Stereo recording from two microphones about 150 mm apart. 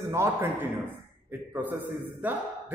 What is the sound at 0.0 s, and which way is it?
A man's voice, 20° right (ahead or behind).